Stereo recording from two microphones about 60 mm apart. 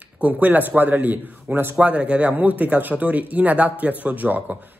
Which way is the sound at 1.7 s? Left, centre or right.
Centre.